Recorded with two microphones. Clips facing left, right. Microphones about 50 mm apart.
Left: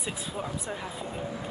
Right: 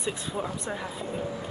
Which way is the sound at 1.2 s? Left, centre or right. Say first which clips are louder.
Right 1 dB; left.